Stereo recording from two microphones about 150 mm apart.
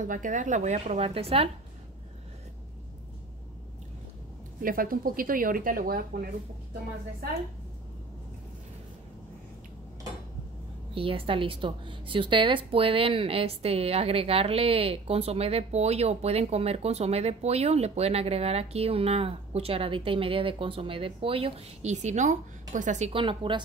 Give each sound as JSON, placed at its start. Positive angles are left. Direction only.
{"t": 0.0, "sound": "a woman's voice", "side_deg": -60}
{"t": 4.6, "sound": "speech", "side_deg": -70}
{"t": 11.0, "sound": "a woman's voice", "side_deg": -40}
{"t": 23.1, "sound": "a woman's voice", "side_deg": -35}